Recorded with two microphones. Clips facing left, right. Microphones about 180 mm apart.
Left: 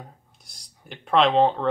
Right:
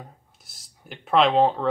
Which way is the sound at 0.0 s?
5° right (ahead or behind).